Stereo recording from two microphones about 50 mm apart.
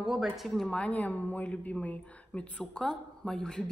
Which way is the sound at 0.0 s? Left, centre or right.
Centre.